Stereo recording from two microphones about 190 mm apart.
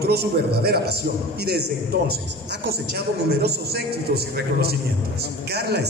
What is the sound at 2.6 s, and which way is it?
A man's voice, 60° right (ahead or behind).